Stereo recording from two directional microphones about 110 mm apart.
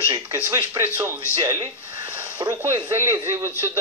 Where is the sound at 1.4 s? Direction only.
30° right (ahead or behind).